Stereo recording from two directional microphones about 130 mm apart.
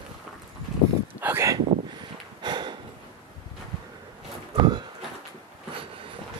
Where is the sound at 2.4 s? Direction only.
35° right (ahead or behind).